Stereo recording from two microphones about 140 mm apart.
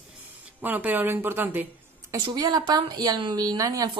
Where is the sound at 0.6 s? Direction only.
15° right (ahead or behind).